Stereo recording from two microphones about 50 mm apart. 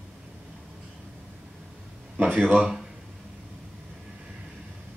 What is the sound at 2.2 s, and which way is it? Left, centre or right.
Speech, right.